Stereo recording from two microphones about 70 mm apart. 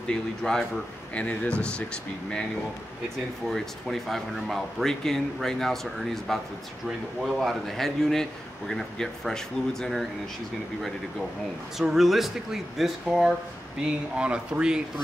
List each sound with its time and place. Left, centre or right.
0.1 s speech: centre
3.4 s speech: centre
11.8 s speech: centre
13.7 s speech: centre